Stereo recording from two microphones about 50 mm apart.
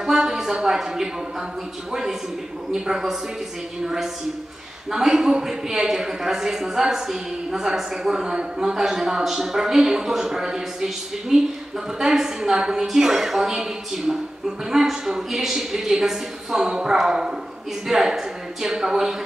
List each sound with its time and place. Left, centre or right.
0.0 s a woman's voice: centre